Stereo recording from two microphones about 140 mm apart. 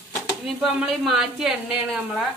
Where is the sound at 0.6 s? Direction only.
Centre (ahead or behind).